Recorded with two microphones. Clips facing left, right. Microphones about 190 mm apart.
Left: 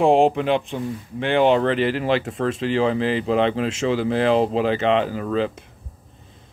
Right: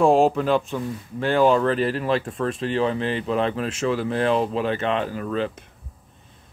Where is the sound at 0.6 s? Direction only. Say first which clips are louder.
Even; 15° left (ahead or behind).